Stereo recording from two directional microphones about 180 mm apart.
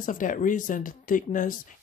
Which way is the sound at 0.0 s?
45° left (ahead or behind).